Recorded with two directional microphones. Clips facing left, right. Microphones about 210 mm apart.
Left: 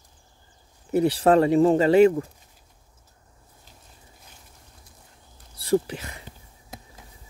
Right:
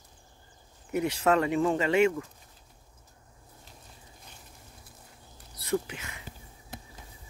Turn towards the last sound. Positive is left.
turn(degrees=35)  # may be behind; listen again after turning